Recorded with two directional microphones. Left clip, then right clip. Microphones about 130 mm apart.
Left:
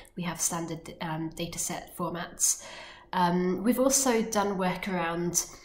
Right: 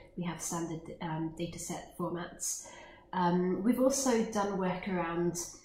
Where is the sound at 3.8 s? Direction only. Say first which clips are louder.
Left 2 dB; 20° left (ahead or behind).